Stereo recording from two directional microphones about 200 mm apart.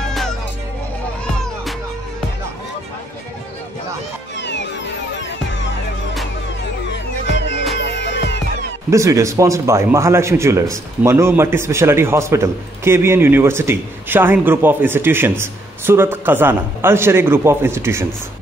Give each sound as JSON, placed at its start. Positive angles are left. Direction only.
{"t": 0.1, "sound": "music", "side_deg": 0}
{"t": 4.4, "sound": "a sound", "side_deg": 60}
{"t": 7.2, "sound": "music", "side_deg": 65}
{"t": 8.9, "sound": "speech", "side_deg": -15}